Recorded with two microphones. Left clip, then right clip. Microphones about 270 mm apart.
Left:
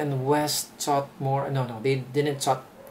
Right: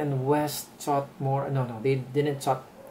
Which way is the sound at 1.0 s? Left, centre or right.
Right.